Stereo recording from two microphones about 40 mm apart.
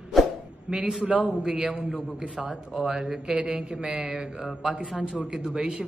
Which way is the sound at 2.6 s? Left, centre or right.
Right.